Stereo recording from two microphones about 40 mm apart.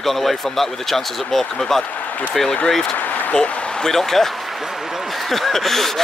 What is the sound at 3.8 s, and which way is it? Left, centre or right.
Speech, centre.